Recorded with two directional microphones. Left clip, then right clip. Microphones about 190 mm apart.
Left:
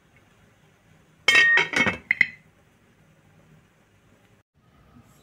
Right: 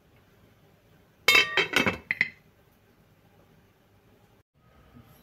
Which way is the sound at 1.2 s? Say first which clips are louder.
Left 4 dB; 15° right (ahead or behind).